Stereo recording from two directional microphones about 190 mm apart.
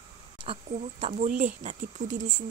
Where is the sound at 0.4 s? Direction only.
35° right (ahead or behind).